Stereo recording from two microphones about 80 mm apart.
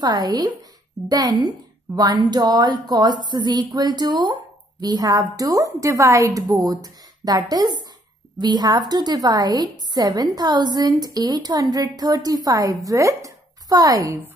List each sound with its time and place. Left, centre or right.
0.0 s a woman's voice: right